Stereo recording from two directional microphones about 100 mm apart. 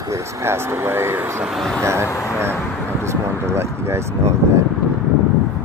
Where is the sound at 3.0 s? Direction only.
25° right (ahead or behind).